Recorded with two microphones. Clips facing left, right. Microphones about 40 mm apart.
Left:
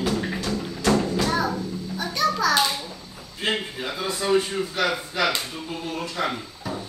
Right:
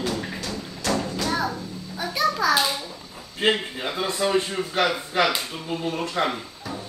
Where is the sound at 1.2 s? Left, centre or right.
Centre.